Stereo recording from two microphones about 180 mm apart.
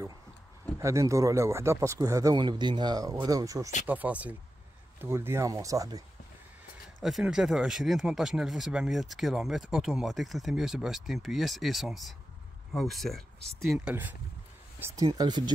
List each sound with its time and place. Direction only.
0.7 s speech: 15° right (ahead or behind)
7.0 s speech: centre (ahead or behind); by 15.5 s 25° right (ahead or behind)